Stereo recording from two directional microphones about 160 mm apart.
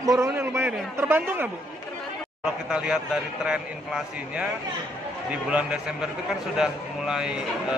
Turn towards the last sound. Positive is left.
turn(degrees=-5)  # may be behind; listen again after turning